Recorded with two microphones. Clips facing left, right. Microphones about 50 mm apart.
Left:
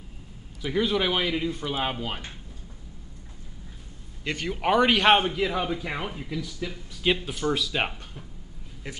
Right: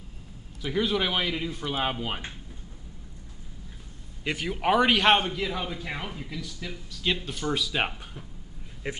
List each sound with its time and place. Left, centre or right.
0.6 s speech: centre
4.2 s speech: centre
5.2 s a man's voice: centre
6.9 s speech: centre
8.8 s speech: right